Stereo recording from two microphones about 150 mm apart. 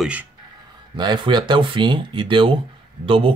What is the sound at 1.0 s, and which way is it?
Speech, 30° right (ahead or behind).